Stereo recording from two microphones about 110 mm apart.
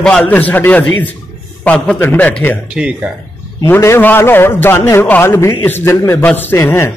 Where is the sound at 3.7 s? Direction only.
25° left (ahead or behind).